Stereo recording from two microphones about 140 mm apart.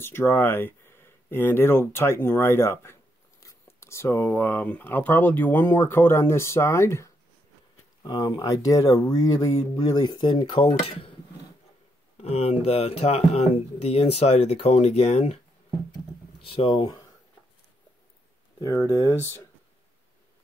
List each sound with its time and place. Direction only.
0.0 s speech: 15° left (ahead or behind)
8.0 s speech: 30° left (ahead or behind)
12.2 s speech: 45° left (ahead or behind)
16.4 s speech: 40° left (ahead or behind)
18.6 s speech: 20° left (ahead or behind)